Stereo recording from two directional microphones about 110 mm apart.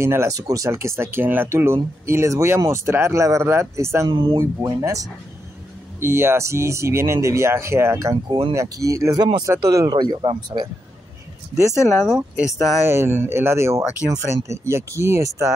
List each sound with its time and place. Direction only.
0.0 s speech: 25° right (ahead or behind)
4.1 s speech: 50° right (ahead or behind)
4.4 s speech: 25° right (ahead or behind); by 10.7 s 45° right (ahead or behind)
11.7 s speech: 5° right (ahead or behind)
12.8 s speech: 20° right (ahead or behind)